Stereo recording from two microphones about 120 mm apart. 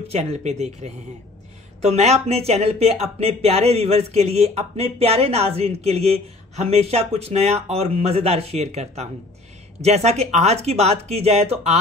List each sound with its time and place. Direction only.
0.1 s speech: 60° right (ahead or behind)